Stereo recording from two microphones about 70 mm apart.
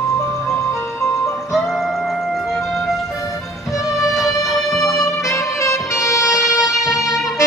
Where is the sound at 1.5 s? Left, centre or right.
Centre.